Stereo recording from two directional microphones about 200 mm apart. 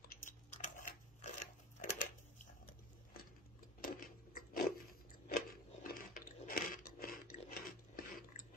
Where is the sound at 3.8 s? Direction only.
45° left (ahead or behind).